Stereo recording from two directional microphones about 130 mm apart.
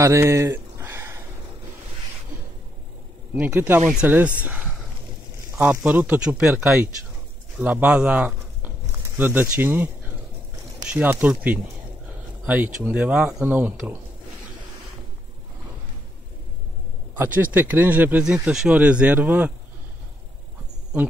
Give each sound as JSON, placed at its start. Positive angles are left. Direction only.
{"t": 0.0, "sound": "a sound", "side_deg": -25}
{"t": 3.3, "sound": "speech", "side_deg": -15}
{"t": 17.1, "sound": "speech", "side_deg": -15}